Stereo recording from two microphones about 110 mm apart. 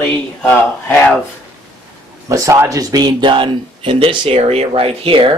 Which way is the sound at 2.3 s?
25° right (ahead or behind).